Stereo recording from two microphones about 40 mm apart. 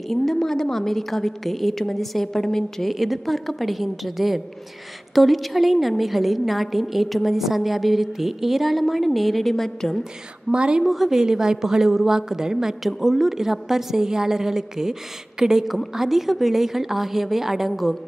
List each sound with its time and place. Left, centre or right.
0.1 s a woman's voice: centre
2.9 s a woman's voice: centre
10.5 s a woman's voice: right
10.8 s a woman's voice: centre